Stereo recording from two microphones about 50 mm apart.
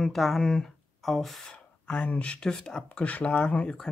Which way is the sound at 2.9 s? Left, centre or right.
Left.